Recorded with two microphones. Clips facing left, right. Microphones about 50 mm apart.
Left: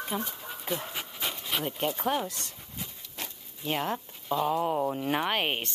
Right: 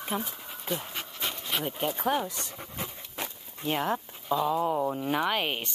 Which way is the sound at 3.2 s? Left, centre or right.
Centre.